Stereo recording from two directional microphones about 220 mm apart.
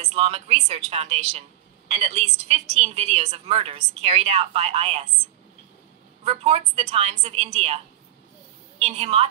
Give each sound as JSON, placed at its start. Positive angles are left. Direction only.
{"t": 0.0, "sound": "a woman's voice", "side_deg": -25}
{"t": 6.2, "sound": "a woman's voice", "side_deg": -30}